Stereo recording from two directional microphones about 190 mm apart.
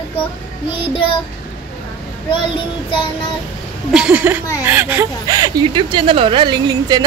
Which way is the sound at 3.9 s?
5° right (ahead or behind).